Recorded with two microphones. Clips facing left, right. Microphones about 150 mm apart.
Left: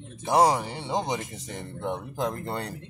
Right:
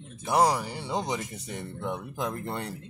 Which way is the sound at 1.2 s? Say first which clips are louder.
Even; 15° left (ahead or behind).